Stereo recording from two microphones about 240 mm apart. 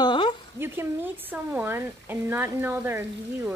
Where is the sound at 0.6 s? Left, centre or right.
Centre.